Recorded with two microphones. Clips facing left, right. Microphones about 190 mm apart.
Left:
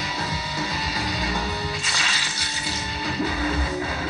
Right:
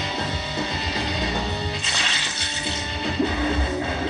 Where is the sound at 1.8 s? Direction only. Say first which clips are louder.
Right 1 dB; 20° right (ahead or behind).